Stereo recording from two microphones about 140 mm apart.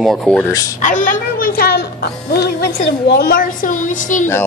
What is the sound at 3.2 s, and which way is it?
Speech, 90° left.